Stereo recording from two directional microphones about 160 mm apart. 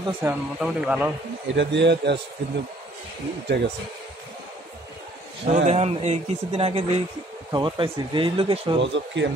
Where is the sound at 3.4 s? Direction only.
90° right.